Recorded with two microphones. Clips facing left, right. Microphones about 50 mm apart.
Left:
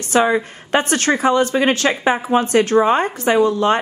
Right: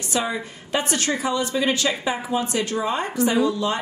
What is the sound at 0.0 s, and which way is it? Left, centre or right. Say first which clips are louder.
A woman's voice: left 9 dB; left.